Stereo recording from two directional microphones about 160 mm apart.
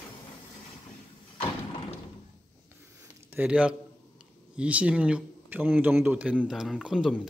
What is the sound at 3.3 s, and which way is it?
Speech, 10° right (ahead or behind).